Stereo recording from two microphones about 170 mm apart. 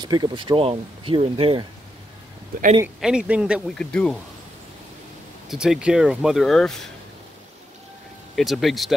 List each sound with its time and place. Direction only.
0.0 s speech: 25° right (ahead or behind)
3.0 s speech: 5° right (ahead or behind)
3.7 s speech: 5° left (ahead or behind)
5.5 s speech: 5° right (ahead or behind)
8.4 s speech: centre (ahead or behind)